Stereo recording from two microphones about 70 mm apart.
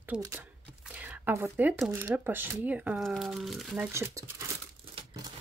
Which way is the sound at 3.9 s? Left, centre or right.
Right.